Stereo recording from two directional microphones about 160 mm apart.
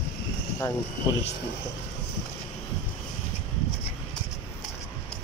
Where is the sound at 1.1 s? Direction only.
25° left (ahead or behind).